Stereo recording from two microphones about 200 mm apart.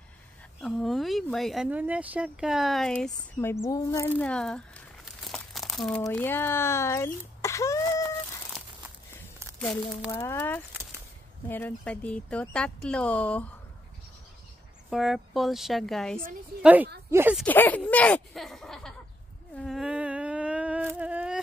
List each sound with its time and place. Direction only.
0.6 s speech: centre (ahead or behind)
3.6 s speech: 15° left (ahead or behind)
4.2 s crumpling: 5° left (ahead or behind)
6.0 s speech: 10° left (ahead or behind)
9.6 s speech: centre (ahead or behind)
14.9 s a woman's voice: centre (ahead or behind)
17.4 s speech: 10° left (ahead or behind)
19.5 s a sound: centre (ahead or behind)